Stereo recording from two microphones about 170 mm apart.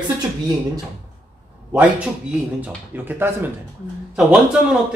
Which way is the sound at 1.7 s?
10° right (ahead or behind).